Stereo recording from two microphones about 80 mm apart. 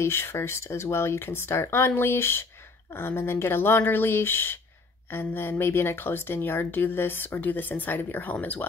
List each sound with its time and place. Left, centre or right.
0.0 s a woman's voice: left